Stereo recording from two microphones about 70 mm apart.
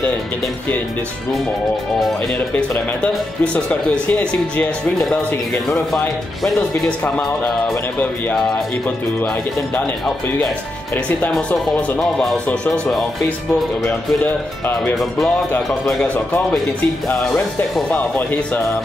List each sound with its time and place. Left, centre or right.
4.1 s speech: centre
6.8 s speech: centre
11.1 s speech: left
12.0 s speech: centre
15.0 s speech: centre
17.9 s speech: left